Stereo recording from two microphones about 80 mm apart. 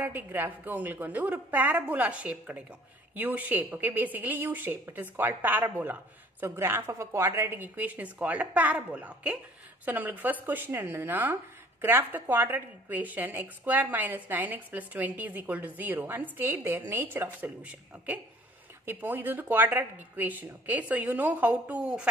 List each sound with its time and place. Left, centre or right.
0.0 s a woman's voice: right
7.5 s a woman's voice: right